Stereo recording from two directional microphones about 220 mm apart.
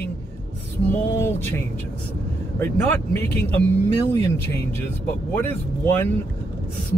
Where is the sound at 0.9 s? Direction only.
10° left (ahead or behind).